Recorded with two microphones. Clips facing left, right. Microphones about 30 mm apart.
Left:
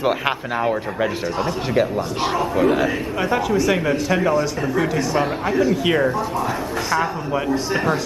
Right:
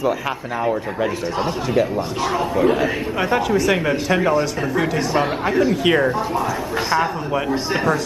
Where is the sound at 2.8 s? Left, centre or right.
Centre.